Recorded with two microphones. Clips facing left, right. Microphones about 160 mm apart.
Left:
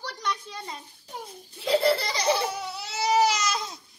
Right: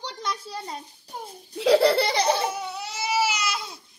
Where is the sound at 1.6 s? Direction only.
70° right (ahead or behind).